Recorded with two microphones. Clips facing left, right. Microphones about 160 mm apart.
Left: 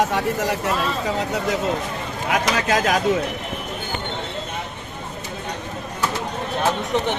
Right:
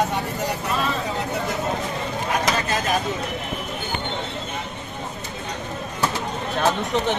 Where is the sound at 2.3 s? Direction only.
90° left.